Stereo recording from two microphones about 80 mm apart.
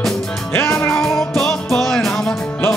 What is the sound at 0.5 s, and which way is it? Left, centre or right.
Music, left.